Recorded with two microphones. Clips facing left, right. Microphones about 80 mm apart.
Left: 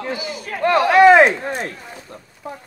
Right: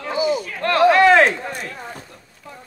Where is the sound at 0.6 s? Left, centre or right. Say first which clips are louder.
Left 2 dB; centre.